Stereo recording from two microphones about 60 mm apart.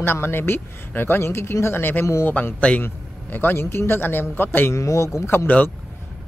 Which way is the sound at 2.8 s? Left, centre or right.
Left.